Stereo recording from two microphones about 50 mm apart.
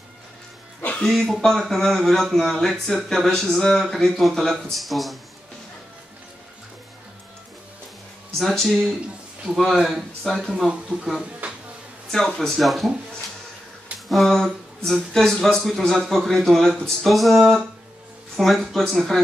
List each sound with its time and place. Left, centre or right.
1.0 s speech: centre
8.4 s speech: centre
10.9 s speech: right
11.4 s a sound: right
12.1 s speech: centre
13.9 s speech: centre